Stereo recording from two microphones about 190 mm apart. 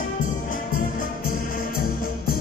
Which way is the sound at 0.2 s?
45° left (ahead or behind).